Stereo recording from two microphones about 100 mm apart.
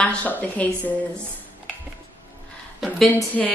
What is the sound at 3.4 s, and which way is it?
Speech, 5° left (ahead or behind).